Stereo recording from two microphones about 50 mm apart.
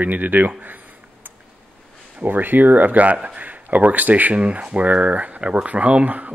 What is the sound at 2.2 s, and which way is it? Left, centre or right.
Speech, right.